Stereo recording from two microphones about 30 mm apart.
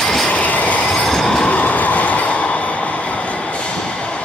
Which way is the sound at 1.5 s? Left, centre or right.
Left.